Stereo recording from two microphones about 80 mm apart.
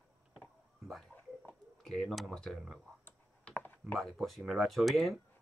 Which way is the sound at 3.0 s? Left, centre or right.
Left.